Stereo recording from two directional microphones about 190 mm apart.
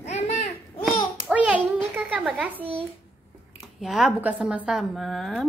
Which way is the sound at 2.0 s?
5° right (ahead or behind).